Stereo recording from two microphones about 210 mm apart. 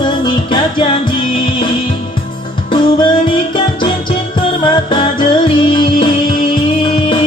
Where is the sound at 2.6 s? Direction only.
20° left (ahead or behind).